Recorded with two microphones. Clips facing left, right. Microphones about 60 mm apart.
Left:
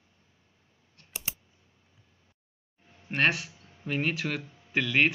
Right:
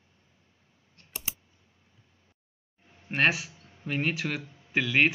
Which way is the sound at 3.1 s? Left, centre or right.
Centre.